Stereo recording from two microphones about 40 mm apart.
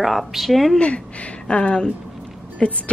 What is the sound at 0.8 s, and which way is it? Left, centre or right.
Speech, left.